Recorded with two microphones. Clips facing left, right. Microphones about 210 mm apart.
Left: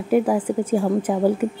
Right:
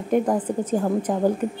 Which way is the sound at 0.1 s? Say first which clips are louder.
Left 2 dB; 5° left (ahead or behind).